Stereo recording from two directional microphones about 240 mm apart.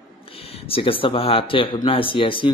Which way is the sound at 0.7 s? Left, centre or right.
Left.